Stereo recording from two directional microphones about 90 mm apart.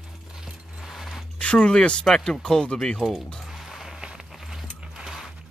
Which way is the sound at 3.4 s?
5° right (ahead or behind).